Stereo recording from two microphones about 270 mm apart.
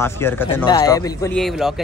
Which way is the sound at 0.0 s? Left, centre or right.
Centre.